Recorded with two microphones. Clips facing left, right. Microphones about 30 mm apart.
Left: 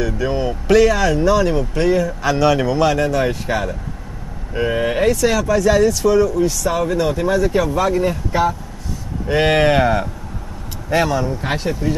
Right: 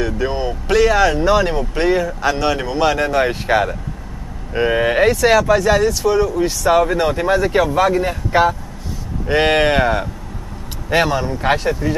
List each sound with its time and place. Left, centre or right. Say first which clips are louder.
0.0 s speech: even; centre
0.5 s speech: left 3 dB; centre
0.8 s speech: right 1 dB; right
2.0 s speech: left 2 dB; centre
2.8 s speech: right 1 dB; right
4.7 s speech: right 2 dB; right
5.6 s speech: left 1 dB; centre
6.4 s speech: right 4 dB; right
7.9 s speech: right 2 dB; right
9.3 s speech: even; centre
10.9 s speech: right 1 dB; right
11.2 s speech: right 4 dB; right